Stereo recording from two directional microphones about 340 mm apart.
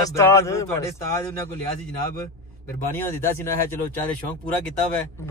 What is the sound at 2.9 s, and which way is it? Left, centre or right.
Speech, centre.